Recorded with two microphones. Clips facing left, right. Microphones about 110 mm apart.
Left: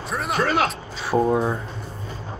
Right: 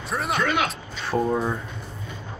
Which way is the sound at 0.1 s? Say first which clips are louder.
Even; centre (ahead or behind).